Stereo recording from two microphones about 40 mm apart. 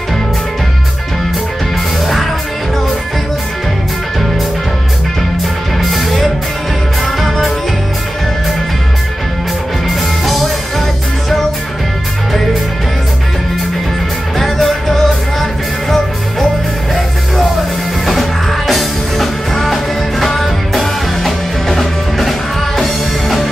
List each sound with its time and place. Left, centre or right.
5.8 s music: centre
9.8 s music: centre
14.4 s music: centre
18.0 s music: centre